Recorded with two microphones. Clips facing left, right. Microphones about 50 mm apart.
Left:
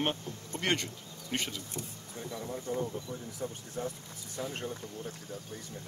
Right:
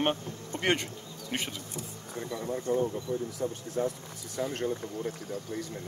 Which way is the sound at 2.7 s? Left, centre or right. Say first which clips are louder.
Right 6 dB; right.